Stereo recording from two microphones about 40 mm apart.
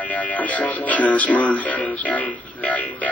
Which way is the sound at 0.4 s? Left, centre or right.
Left.